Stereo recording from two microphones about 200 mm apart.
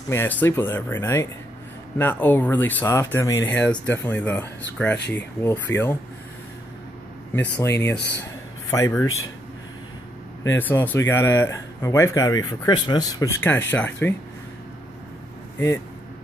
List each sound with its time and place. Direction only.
0.1 s speech: 10° left (ahead or behind)
7.3 s speech: 10° left (ahead or behind)
8.2 s a sound: 15° left (ahead or behind)
10.5 s speech: 10° left (ahead or behind)